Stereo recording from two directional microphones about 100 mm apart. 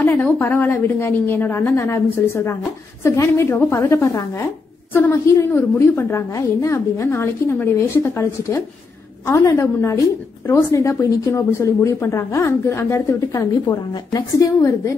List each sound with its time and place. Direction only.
0.0 s a woman's voice: 20° left (ahead or behind)
13.7 s a woman's voice: 45° left (ahead or behind)